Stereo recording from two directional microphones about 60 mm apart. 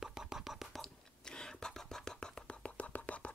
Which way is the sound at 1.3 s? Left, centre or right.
Centre.